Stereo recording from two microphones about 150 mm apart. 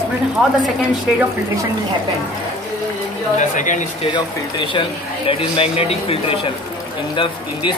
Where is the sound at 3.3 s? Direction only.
55° left (ahead or behind).